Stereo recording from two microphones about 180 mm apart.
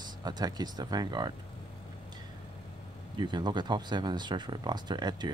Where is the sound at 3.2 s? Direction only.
25° right (ahead or behind).